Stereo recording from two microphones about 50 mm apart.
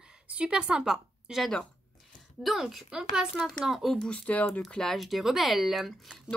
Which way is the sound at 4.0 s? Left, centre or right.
Left.